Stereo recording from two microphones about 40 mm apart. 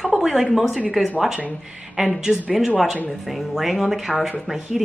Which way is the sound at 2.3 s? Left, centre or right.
Right.